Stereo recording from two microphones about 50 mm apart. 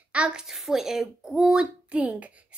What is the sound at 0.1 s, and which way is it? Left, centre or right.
A child's voice, centre.